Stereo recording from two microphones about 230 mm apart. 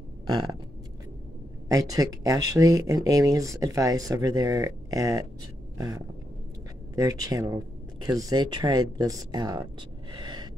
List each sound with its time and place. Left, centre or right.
0.3 s speech: centre
1.7 s speech: centre
5.8 s a sound: centre
7.0 s speech: centre
10.1 s gasp: centre